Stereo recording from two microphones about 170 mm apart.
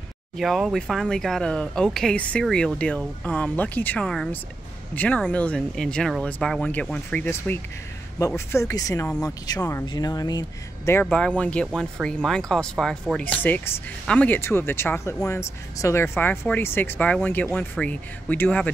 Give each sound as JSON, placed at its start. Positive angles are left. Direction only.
{"t": 0.4, "sound": "speech", "side_deg": 0}
{"t": 10.9, "sound": "speech", "side_deg": 10}